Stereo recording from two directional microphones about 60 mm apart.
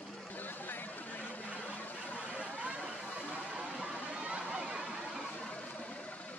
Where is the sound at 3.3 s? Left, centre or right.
Centre.